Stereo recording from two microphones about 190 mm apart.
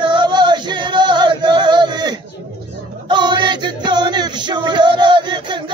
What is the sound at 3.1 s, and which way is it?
Music, 25° right (ahead or behind).